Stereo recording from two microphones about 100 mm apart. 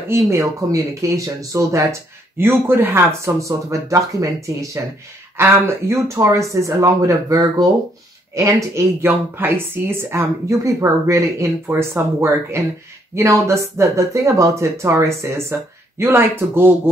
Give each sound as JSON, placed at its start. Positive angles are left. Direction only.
{"t": 0.1, "sound": "speech", "side_deg": -30}